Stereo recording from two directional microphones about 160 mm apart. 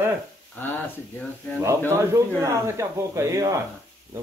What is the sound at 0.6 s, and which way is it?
Speech, 10° left (ahead or behind).